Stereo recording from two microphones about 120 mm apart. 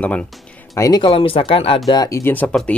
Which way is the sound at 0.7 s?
30° left (ahead or behind).